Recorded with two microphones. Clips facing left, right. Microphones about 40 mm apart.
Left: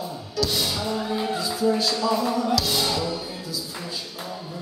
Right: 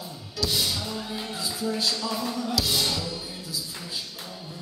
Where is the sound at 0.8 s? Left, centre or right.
Centre.